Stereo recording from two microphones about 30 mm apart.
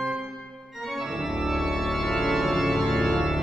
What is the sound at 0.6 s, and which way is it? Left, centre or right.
Organ, centre.